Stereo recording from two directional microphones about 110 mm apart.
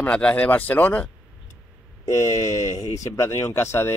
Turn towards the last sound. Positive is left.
turn(degrees=25)  # may be behind; listen again after turning